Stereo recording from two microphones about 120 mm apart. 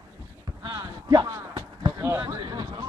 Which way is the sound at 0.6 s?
35° right (ahead or behind).